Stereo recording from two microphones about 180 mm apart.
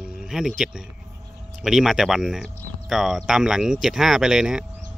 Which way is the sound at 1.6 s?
Centre (ahead or behind).